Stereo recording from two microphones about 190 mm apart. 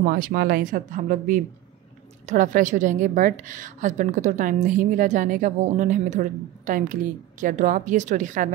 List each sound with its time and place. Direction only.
0.0 s a woman's voice: 50° right (ahead or behind)